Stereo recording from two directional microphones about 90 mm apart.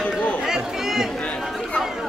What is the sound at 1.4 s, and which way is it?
Chatter, centre (ahead or behind).